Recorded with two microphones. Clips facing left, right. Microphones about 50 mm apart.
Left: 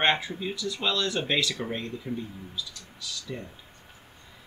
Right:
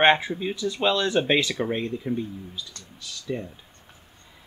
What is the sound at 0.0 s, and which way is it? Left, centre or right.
Speech, right.